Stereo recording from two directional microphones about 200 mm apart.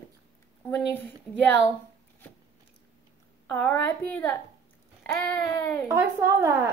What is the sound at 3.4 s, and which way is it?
Speech, 10° left (ahead or behind).